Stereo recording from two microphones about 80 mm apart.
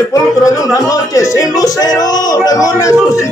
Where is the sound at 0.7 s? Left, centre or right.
Left.